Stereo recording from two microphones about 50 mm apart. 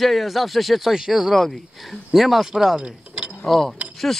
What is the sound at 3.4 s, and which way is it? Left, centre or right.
Speech, centre.